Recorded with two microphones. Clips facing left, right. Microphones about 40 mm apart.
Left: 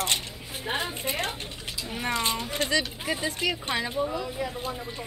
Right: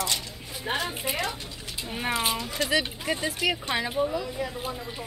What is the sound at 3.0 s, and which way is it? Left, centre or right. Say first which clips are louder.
Speech: right 1 dB; centre.